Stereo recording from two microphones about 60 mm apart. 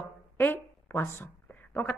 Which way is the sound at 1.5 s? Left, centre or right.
Left.